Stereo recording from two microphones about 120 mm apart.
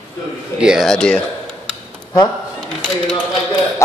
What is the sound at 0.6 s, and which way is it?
Speech, 5° right (ahead or behind).